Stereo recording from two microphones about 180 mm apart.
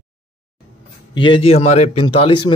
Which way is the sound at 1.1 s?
25° left (ahead or behind).